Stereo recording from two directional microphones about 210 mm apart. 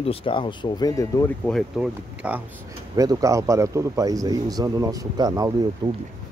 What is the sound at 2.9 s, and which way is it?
A man's voice, 15° right (ahead or behind).